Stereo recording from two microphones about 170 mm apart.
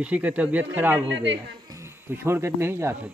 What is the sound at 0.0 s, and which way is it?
Speech, 10° right (ahead or behind).